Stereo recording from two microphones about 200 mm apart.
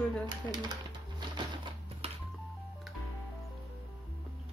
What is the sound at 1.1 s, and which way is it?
Typewriter, 20° right (ahead or behind).